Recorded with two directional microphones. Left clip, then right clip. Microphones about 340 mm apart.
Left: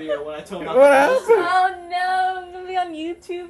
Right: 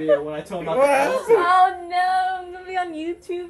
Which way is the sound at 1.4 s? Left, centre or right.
Centre.